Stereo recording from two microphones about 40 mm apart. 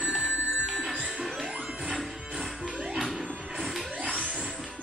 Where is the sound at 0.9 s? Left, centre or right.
Right.